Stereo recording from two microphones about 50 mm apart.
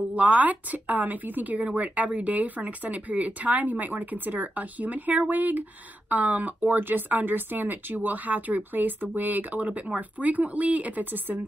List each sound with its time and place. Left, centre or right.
0.1 s speech: right